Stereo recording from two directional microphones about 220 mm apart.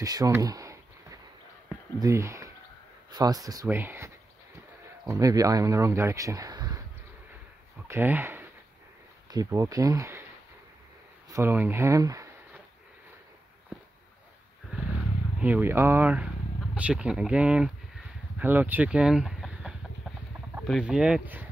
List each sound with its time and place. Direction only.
0.0 s speech: 15° right (ahead or behind)
2.0 s speech: 15° right (ahead or behind)
7.9 s speech: 10° right (ahead or behind)
11.2 s speech: 10° right (ahead or behind)
14.7 s wild animals: 5° right (ahead or behind)
15.3 s speech: 5° right (ahead or behind)